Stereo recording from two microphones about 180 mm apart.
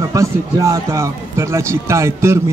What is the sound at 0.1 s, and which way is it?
Speech, 20° right (ahead or behind).